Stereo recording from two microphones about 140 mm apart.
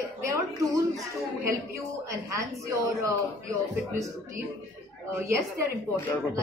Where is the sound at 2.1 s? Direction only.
20° right (ahead or behind).